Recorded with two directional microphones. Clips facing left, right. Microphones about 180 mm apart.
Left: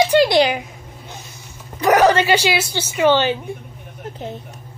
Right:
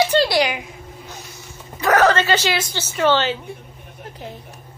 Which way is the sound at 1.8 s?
15° left (ahead or behind).